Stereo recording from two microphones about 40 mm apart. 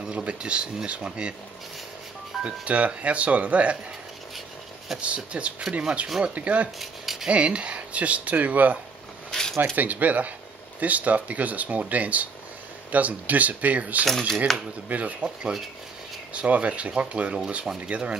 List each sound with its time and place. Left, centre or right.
0.2 s speech: right
2.4 s speech: right
4.9 s speech: right
6.8 s rub: centre
7.2 s speech: right
9.3 s a sound: centre
9.8 s speech: right
14.0 s speech: centre
14.9 s speech: right